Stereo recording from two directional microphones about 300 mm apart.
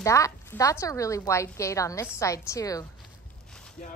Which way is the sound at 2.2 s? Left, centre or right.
Centre.